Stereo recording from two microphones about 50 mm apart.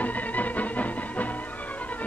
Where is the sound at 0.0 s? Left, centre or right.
Left.